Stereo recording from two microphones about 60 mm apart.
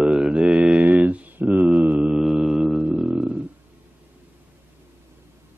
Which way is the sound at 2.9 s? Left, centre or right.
Right.